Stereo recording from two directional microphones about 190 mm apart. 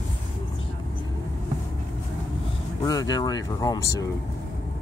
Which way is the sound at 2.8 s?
20° left (ahead or behind).